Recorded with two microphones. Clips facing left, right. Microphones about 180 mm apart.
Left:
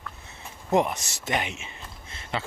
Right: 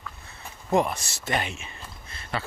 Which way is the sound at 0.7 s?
20° left (ahead or behind).